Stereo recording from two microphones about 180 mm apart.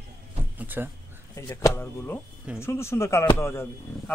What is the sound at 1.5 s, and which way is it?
Speech, 15° left (ahead or behind).